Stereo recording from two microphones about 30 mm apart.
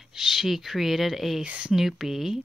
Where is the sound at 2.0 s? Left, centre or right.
Centre.